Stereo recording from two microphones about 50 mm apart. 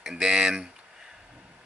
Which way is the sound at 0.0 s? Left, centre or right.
Centre.